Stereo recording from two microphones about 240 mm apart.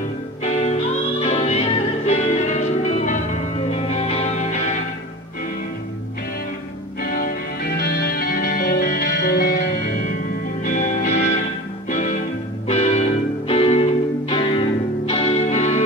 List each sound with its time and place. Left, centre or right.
0.4 s music: left
7.0 s music: left